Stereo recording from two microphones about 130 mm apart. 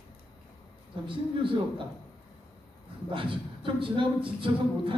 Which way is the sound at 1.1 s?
40° right (ahead or behind).